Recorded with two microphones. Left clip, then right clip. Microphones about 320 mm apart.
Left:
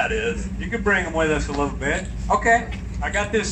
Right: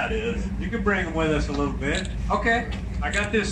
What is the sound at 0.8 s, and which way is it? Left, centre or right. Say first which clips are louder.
A man's voice: left 4 dB; left.